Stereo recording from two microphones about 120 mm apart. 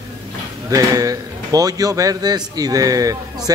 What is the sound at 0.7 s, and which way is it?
A man's voice, 30° right (ahead or behind).